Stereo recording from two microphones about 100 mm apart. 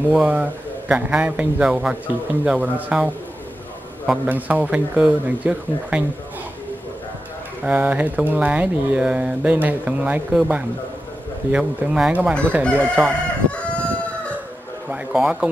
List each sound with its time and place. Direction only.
0.1 s speech: 15° right (ahead or behind)
7.6 s speech: 15° right (ahead or behind)
12.6 s chicken: 10° left (ahead or behind)
14.9 s a sound: 10° right (ahead or behind)